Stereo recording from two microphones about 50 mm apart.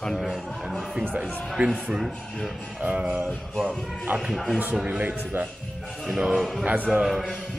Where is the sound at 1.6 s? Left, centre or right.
Right.